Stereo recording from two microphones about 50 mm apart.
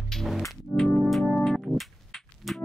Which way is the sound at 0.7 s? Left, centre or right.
Centre.